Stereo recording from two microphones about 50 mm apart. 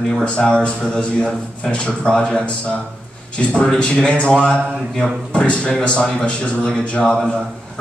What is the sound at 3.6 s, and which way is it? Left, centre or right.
A man's voice, centre.